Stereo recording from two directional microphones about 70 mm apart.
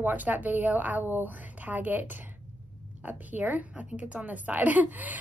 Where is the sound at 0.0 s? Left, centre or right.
Right.